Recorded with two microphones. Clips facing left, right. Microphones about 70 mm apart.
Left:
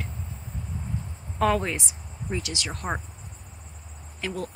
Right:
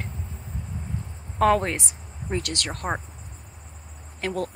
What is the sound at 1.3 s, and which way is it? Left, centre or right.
Speech, right.